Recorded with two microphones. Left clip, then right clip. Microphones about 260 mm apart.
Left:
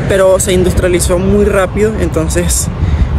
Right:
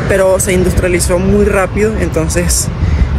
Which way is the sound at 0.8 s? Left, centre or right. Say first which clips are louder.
Left 1 dB; centre.